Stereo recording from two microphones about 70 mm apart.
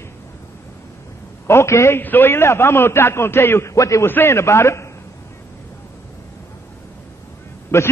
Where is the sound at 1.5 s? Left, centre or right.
Left.